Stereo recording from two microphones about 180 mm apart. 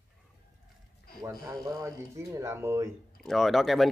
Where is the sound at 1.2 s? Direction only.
20° right (ahead or behind).